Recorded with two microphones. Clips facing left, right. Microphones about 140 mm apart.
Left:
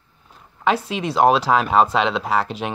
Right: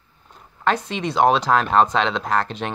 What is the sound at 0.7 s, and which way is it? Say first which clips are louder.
Speech: left 1 dB; 5° left (ahead or behind).